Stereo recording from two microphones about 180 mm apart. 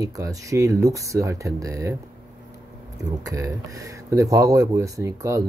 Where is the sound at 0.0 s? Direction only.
20° right (ahead or behind).